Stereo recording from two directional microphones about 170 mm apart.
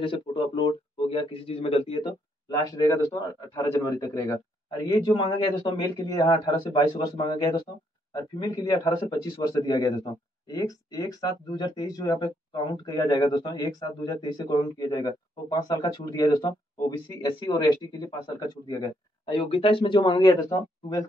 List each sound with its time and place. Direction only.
0.0 s speech: 30° left (ahead or behind)
2.5 s speech: 20° left (ahead or behind)
19.2 s speech: 35° left (ahead or behind)